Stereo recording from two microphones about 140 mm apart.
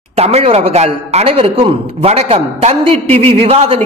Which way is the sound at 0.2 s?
50° right (ahead or behind).